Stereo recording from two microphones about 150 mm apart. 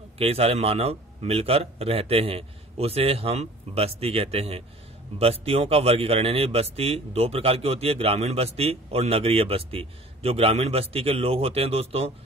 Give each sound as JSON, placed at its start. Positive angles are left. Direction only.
{"t": 0.2, "sound": "a man's voice", "side_deg": -40}